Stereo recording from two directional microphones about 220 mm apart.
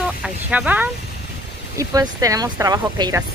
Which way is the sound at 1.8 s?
15° right (ahead or behind).